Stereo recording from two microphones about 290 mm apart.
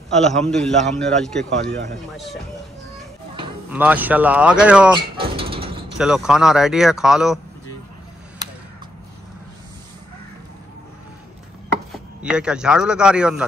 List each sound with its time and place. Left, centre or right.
0.1 s a man's voice: centre
3.7 s a man's voice: centre
5.1 s a sound: centre
5.9 s a man's voice: centre
11.9 s a man's voice: centre